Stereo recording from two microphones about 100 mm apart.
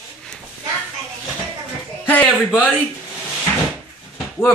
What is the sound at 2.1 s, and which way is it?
Speech, 15° left (ahead or behind).